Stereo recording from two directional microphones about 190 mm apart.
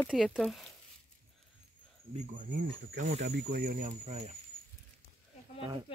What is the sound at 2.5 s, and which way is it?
Speech, 65° right (ahead or behind).